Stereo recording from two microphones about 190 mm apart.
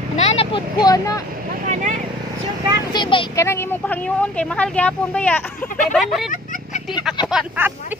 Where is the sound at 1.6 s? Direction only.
40° right (ahead or behind).